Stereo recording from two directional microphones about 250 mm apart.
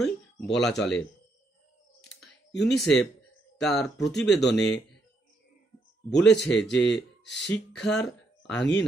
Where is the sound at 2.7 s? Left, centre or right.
Centre.